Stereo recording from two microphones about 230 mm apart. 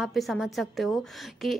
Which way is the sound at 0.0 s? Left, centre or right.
Centre.